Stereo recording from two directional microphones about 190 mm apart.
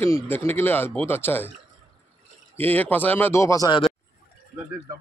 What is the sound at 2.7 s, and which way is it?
Speech, 10° left (ahead or behind).